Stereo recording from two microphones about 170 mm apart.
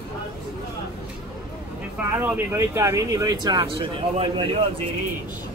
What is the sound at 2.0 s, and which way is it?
Speech, 15° right (ahead or behind).